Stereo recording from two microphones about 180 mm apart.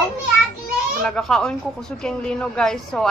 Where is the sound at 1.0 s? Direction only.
5° left (ahead or behind).